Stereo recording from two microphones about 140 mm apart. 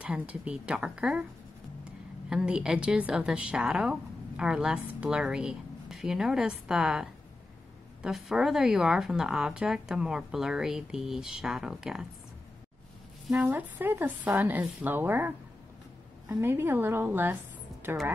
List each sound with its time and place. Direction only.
0.0 s a woman's voice: 10° right (ahead or behind)
13.4 s speech: 15° right (ahead or behind)